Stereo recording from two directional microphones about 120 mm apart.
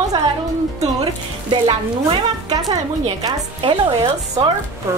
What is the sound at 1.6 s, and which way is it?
A woman's voice, 40° right (ahead or behind).